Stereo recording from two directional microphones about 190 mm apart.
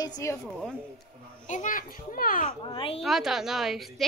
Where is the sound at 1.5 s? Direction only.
45° left (ahead or behind).